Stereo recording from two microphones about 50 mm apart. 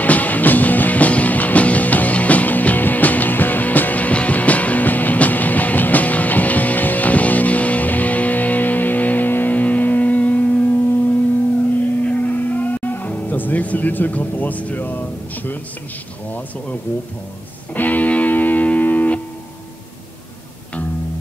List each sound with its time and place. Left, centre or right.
0.0 s music: left
12.0 s music: left
17.7 s music: left